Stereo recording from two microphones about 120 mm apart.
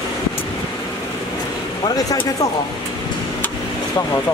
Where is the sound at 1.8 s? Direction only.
30° left (ahead or behind).